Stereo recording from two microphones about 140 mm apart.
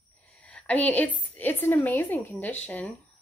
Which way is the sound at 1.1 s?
15° left (ahead or behind).